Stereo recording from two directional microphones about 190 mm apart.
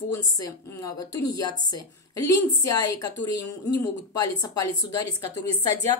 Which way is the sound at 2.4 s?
15° left (ahead or behind).